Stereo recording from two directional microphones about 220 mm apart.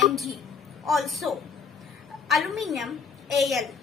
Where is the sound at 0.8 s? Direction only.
Centre (ahead or behind).